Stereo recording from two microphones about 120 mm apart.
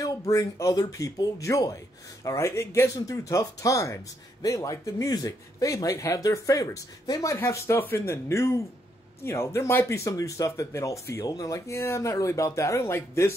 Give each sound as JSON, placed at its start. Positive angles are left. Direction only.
{"t": 0.3, "sound": "speech", "side_deg": 25}